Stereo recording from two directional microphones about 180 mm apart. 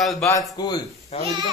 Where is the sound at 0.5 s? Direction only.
20° left (ahead or behind).